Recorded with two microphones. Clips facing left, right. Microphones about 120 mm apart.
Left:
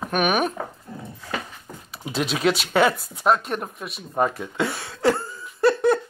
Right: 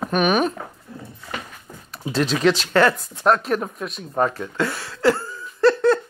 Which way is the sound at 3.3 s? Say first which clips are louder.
Right 2 dB; centre (ahead or behind).